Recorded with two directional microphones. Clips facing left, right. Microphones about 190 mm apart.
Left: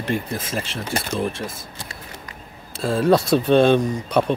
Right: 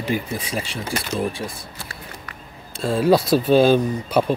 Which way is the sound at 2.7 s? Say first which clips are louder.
Even; centre (ahead or behind).